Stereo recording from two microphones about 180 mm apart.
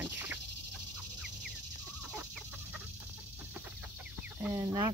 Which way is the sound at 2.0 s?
5° right (ahead or behind).